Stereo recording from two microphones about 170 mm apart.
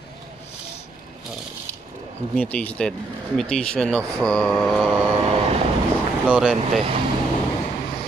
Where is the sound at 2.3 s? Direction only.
10° left (ahead or behind).